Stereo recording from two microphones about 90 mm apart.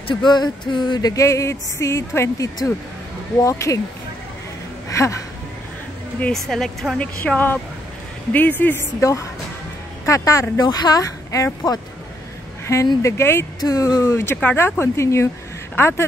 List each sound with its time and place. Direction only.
0.1 s a sound: 55° left (ahead or behind)
1.1 s speech: 35° left (ahead or behind)
5.0 s speech: 35° left (ahead or behind)
6.3 s a woman's voice: 5° left (ahead or behind)
7.3 s speech: 20° left (ahead or behind)
9.0 s speech: 35° left (ahead or behind)
13.6 s speech: 40° left (ahead or behind); by 16.1 s 25° left (ahead or behind)